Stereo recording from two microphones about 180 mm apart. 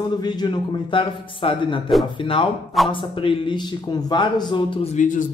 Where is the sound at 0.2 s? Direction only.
25° left (ahead or behind).